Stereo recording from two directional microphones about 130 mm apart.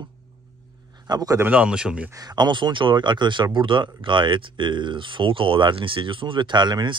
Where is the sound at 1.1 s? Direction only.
30° right (ahead or behind).